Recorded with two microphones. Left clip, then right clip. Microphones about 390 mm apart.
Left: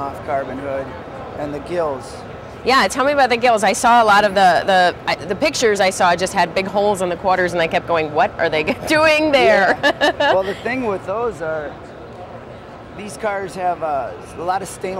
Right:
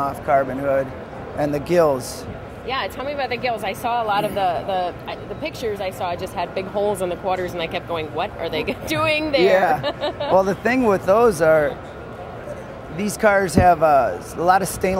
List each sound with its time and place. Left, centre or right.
0.0 s a sound: right
1.4 s speech: right
2.6 s speech: left
10.3 s speech: right
13.0 s speech: right